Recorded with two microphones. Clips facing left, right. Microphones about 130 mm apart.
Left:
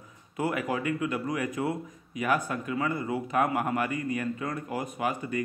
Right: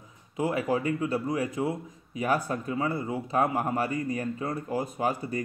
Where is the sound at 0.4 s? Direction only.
30° right (ahead or behind).